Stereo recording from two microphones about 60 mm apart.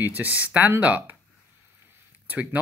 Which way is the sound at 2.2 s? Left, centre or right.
Right.